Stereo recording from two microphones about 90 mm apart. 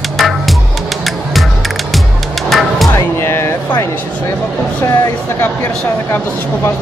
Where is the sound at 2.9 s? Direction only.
30° left (ahead or behind).